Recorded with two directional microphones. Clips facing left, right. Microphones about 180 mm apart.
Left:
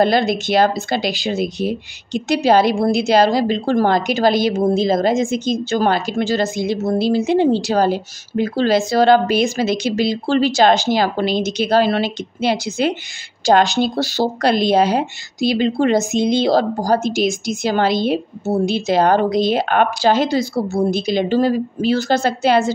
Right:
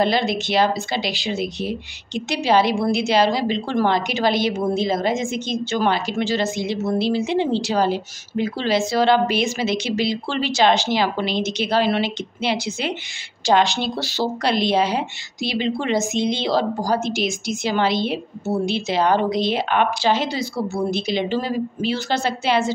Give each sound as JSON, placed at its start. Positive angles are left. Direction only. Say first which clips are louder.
{"t": 0.0, "sound": "a woman's voice", "louder": "left 4 dB", "side_deg": 45}